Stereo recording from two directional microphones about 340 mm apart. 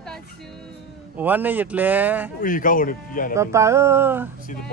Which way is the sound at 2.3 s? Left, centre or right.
Left.